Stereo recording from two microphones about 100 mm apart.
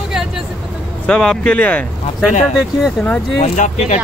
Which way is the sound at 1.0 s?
10° left (ahead or behind).